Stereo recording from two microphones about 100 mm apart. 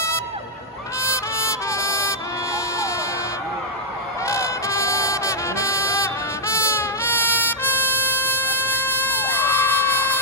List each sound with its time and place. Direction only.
1.0 s music: 25° left (ahead or behind)
4.3 s music: 30° left (ahead or behind)